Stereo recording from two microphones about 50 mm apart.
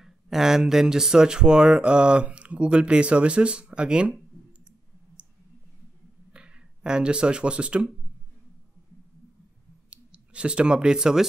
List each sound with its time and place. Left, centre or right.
0.0 s speech: centre
5.2 s clicking: right
6.3 s speech: centre
9.8 s speech: right